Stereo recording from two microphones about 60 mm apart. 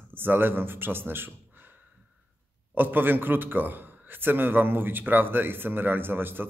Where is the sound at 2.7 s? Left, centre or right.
Right.